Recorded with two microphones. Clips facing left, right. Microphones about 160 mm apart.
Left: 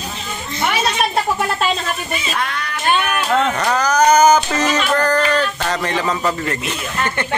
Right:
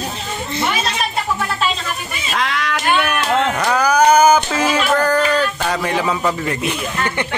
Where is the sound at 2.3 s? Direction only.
90° right.